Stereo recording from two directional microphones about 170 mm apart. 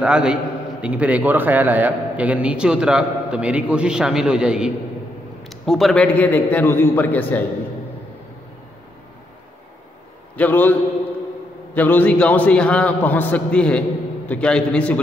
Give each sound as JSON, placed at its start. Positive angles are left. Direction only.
{"t": 0.0, "sound": "a man's voice", "side_deg": -5}
{"t": 10.3, "sound": "a man's voice", "side_deg": 10}